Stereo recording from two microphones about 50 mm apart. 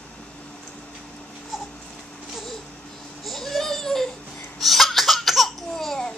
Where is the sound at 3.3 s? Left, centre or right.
Centre.